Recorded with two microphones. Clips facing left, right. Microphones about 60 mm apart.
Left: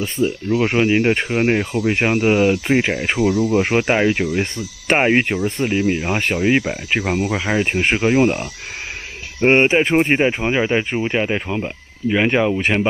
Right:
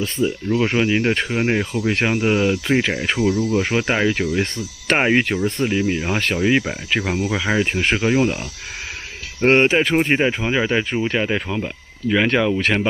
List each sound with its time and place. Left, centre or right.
0.0 s speech: centre